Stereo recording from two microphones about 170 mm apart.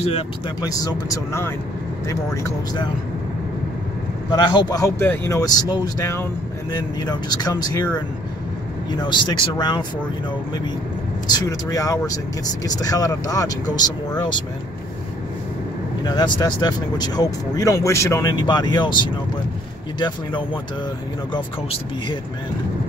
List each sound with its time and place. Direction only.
0.6 s speech: 20° left (ahead or behind)
4.3 s speech: 25° left (ahead or behind)
11.3 s speech: 20° left (ahead or behind)
16.0 s speech: 25° left (ahead or behind)
21.3 s speech: 30° left (ahead or behind)